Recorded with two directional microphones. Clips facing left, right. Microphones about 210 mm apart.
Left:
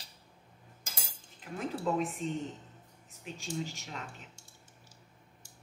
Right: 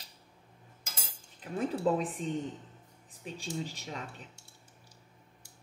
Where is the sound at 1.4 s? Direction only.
35° right (ahead or behind).